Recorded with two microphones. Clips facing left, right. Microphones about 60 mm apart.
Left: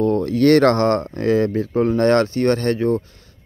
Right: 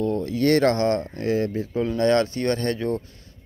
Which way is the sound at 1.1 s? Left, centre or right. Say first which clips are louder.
Left 6 dB; left.